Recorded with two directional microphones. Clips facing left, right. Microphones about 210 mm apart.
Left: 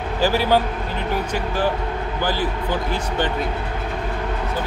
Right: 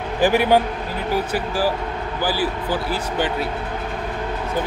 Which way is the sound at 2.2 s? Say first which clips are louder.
Right 1 dB; 10° right (ahead or behind).